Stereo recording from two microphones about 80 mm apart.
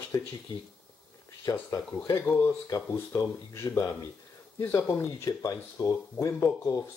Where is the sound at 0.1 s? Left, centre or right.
Left.